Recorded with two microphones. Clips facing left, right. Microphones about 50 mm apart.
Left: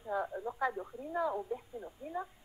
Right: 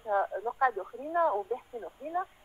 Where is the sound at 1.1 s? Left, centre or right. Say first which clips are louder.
Right 7 dB; right.